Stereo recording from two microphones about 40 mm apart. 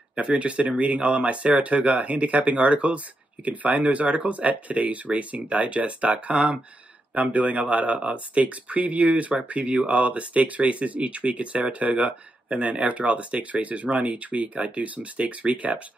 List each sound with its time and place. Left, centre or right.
0.1 s speech: right